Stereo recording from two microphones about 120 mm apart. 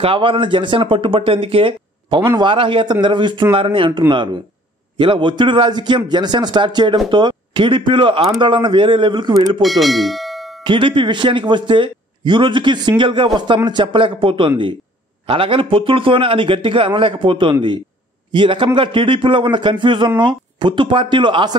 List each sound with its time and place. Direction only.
0.0 s a man's voice: 50° right (ahead or behind)
9.6 s speech: centre (ahead or behind)
10.6 s a man's voice: 45° right (ahead or behind)